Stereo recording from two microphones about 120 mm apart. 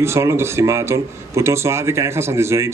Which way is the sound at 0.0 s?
20° right (ahead or behind).